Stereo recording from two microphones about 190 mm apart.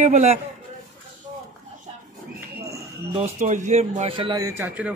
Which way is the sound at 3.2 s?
40° right (ahead or behind).